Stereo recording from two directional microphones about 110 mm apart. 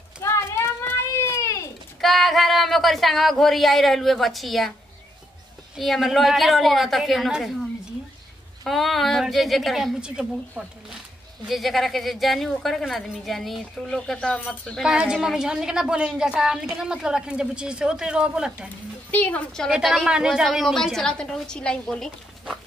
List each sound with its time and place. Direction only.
0.2 s a sound: 25° left (ahead or behind)
2.0 s speech: centre (ahead or behind)
5.8 s a woman's voice: centre (ahead or behind)
8.6 s a woman's voice: centre (ahead or behind)
11.4 s a woman's voice: centre (ahead or behind)
14.8 s a woman's voice: 5° right (ahead or behind)
19.0 s a woman's voice: 15° left (ahead or behind)